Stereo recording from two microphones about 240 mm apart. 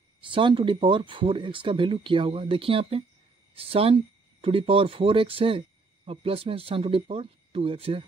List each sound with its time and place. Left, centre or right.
0.2 s speech: right